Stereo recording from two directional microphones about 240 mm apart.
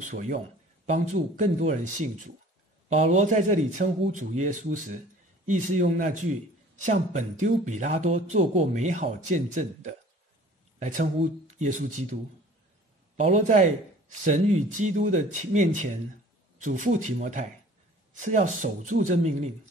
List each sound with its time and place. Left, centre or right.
0.1 s speech: right
13.2 s speech: right